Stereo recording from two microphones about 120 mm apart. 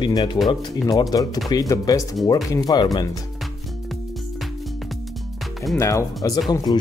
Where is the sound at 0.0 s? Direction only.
35° left (ahead or behind).